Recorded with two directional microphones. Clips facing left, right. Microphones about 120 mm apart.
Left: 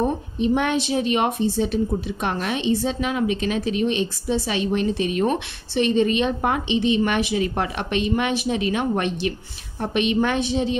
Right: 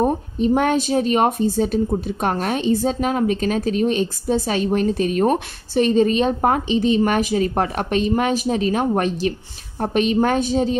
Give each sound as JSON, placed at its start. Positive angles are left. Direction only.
{"t": 0.0, "sound": "a woman's voice", "side_deg": -40}